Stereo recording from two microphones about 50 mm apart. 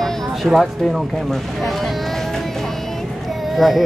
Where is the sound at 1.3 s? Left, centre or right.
Centre.